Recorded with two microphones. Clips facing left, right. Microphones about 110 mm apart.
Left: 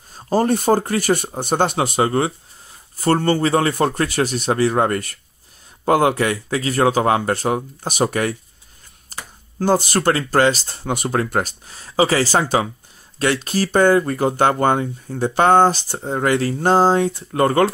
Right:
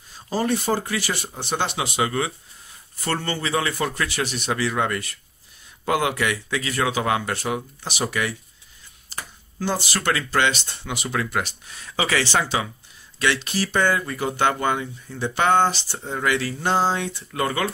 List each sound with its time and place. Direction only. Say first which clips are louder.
0.1 s speech: left 6 dB; 45° left (ahead or behind)
9.1 s a sound: left 1 dB; 45° left (ahead or behind)
9.6 s speech: left 8 dB; 45° left (ahead or behind)